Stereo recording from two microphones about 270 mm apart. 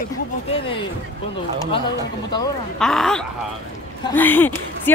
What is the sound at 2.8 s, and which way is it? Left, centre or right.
A woman's voice, centre.